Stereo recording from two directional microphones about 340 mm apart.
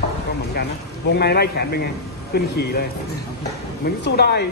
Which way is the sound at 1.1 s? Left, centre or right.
Left.